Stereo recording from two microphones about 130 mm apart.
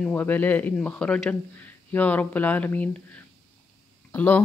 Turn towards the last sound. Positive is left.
turn(degrees=10)  # may be behind; listen again after turning